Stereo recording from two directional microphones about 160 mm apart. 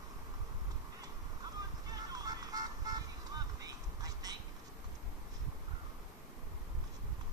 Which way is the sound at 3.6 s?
25° right (ahead or behind).